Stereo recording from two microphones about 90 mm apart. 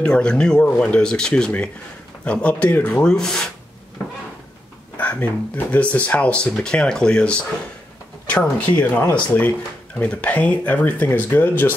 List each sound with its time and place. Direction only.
0.0 s speech: 10° left (ahead or behind)
4.9 s speech: 15° left (ahead or behind)